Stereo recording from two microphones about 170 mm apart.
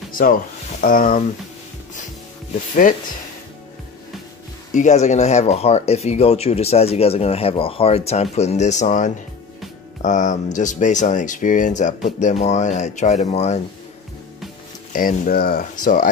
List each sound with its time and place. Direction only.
0.1 s speech: 55° left (ahead or behind)
2.7 s speech: 55° left (ahead or behind)
4.7 s speech: 40° left (ahead or behind)
14.9 s speech: 55° left (ahead or behind)